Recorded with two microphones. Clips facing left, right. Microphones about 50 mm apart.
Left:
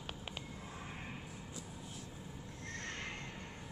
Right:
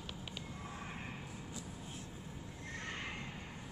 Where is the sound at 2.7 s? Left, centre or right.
Centre.